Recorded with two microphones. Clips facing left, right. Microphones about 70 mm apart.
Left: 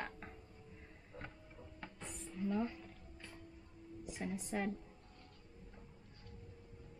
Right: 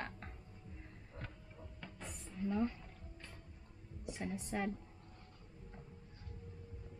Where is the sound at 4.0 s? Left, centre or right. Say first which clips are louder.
Right 1 dB; centre.